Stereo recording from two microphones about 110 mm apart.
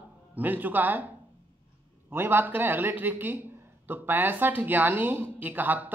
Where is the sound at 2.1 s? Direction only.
20° right (ahead or behind).